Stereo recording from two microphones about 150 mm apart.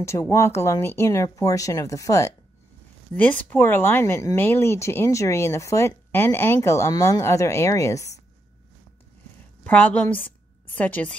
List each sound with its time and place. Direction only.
0.0 s speech: 20° left (ahead or behind)
3.2 s speech: 10° left (ahead or behind)
9.6 s a woman's voice: 10° left (ahead or behind)